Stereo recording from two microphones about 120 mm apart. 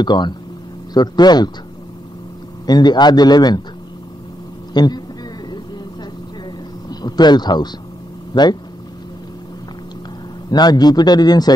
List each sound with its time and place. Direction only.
0.0 s a man's voice: 40° left (ahead or behind)
2.6 s a man's voice: 35° left (ahead or behind)
4.7 s a man's voice: 35° left (ahead or behind)
6.9 s speech: 35° left (ahead or behind)
10.5 s a man's voice: 35° left (ahead or behind)